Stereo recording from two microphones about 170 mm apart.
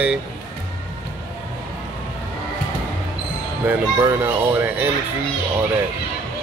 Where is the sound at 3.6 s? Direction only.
15° right (ahead or behind).